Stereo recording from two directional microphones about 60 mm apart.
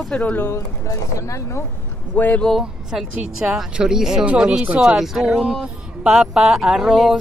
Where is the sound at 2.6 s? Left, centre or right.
Centre.